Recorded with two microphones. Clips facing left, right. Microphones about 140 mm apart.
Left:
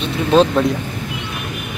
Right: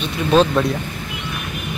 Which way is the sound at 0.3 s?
20° left (ahead or behind).